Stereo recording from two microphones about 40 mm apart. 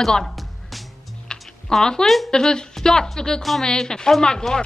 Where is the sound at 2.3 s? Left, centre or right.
Centre.